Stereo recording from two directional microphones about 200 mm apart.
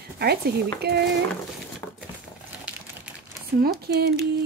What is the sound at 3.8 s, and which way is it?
Speech, 50° right (ahead or behind).